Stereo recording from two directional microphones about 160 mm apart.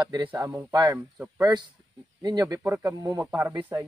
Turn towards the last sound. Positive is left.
turn(degrees=-15)  # may be behind; listen again after turning